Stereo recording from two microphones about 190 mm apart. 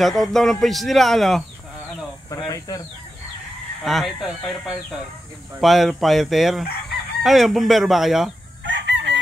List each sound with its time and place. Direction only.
0.0 s speech: centre (ahead or behind)
2.3 s speech: 20° left (ahead or behind)
3.8 s speech: centre (ahead or behind)
8.6 s chicken: 70° right (ahead or behind)